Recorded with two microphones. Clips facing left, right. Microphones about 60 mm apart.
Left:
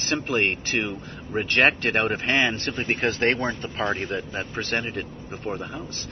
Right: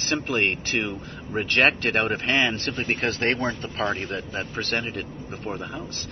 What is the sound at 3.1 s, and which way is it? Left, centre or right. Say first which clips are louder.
Speech: left 3 dB; left.